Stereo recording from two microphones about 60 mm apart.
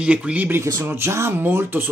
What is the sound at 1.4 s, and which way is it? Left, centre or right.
Speech, right.